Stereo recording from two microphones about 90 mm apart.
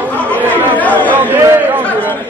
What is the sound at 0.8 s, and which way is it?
Chatter, 20° left (ahead or behind).